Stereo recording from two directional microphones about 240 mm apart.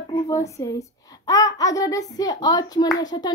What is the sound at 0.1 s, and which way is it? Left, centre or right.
A child's voice, centre.